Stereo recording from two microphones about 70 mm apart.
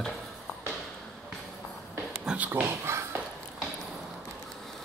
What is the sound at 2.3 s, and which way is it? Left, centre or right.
Speech, right.